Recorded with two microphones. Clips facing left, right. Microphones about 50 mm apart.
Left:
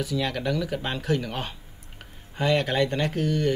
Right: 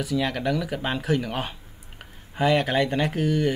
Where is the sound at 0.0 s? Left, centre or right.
Centre.